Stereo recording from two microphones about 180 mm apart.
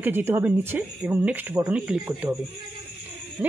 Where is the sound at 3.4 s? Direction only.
10° right (ahead or behind).